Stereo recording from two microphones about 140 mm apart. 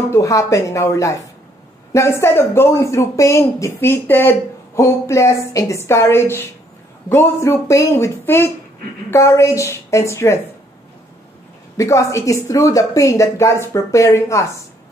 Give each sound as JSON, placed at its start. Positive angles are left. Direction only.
{"t": 0.1, "sound": "speech", "side_deg": 20}
{"t": 11.7, "sound": "speech", "side_deg": 20}